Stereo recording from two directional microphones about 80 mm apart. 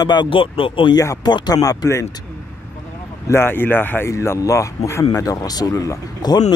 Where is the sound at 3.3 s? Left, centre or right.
Left.